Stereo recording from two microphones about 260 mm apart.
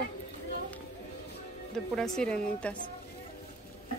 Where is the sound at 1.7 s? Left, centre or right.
Centre.